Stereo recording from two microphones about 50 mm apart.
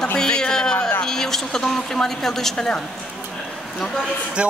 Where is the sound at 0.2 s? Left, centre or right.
Centre.